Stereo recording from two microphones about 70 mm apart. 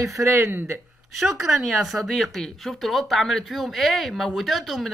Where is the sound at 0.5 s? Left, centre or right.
Right.